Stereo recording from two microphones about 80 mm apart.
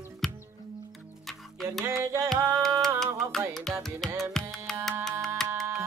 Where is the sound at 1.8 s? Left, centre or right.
Right.